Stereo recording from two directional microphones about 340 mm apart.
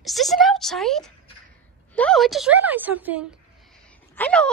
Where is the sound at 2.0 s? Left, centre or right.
Centre.